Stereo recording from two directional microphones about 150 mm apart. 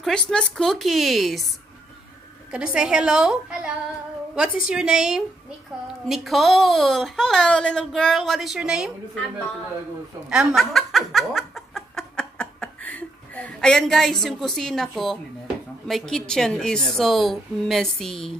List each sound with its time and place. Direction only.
0.0 s speech: 5° left (ahead or behind)
2.5 s speech: 5° right (ahead or behind)
10.3 s snicker: centre (ahead or behind)
14.2 s speech: 5° left (ahead or behind)